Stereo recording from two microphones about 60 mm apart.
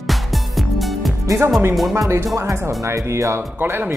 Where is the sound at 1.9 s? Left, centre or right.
Right.